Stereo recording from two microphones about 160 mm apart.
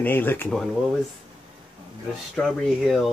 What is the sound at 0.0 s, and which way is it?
Speech, 15° left (ahead or behind).